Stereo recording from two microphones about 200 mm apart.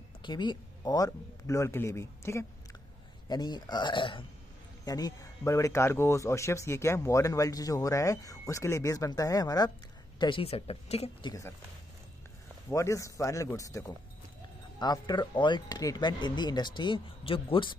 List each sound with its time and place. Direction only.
0.2 s speech: 20° left (ahead or behind)
12.6 s speech: 15° left (ahead or behind)